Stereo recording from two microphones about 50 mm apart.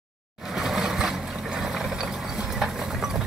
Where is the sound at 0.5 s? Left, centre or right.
Centre.